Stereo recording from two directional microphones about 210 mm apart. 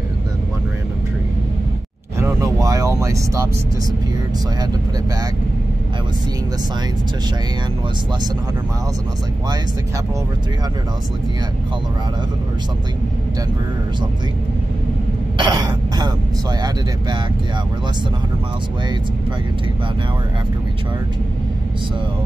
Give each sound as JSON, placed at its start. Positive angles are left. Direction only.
{"t": 2.1, "sound": "vehicle", "side_deg": -15}
{"t": 15.3, "sound": "throat clearing", "side_deg": -20}